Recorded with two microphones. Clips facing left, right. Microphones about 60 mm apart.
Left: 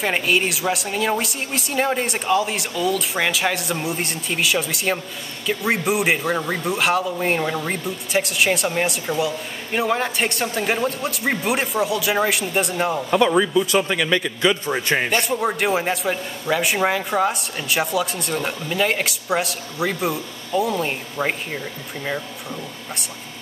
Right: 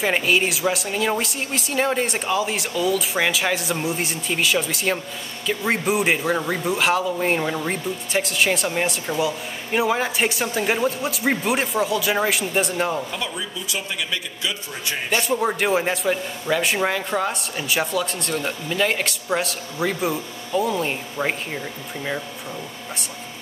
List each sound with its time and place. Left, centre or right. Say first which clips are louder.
0.0 s speech: even; centre
13.1 s a man's voice: left 13 dB; left
15.0 s speech: even; centre